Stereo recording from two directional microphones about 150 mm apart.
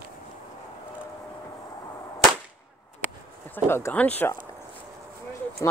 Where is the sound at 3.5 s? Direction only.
15° left (ahead or behind).